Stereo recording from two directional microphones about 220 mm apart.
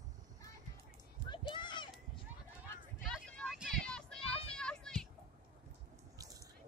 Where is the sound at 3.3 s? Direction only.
Centre (ahead or behind).